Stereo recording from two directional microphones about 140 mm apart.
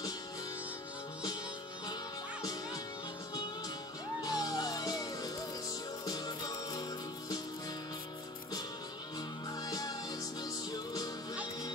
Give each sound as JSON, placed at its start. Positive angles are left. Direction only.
{"t": 4.2, "sound": "music", "side_deg": 25}
{"t": 9.6, "sound": "music", "side_deg": 25}